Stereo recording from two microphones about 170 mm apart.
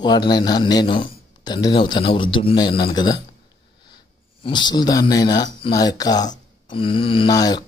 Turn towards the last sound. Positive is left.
turn(degrees=25)  # may be behind; listen again after turning